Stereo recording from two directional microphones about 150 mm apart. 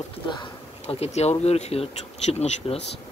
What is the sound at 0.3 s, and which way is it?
Speech, 40° left (ahead or behind).